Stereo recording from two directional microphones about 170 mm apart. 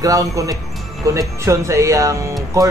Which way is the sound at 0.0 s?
20° right (ahead or behind).